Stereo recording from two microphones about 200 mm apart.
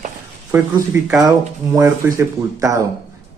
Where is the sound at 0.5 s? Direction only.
10° right (ahead or behind).